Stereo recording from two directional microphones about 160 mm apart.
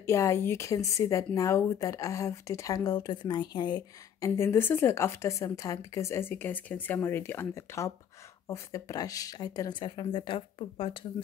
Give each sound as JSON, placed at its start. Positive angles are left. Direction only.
{"t": 0.0, "sound": "a woman's voice", "side_deg": 15}
{"t": 4.4, "sound": "a woman's voice", "side_deg": 15}